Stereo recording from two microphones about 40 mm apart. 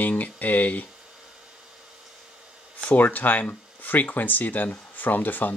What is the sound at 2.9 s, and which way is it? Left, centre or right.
Speech, left.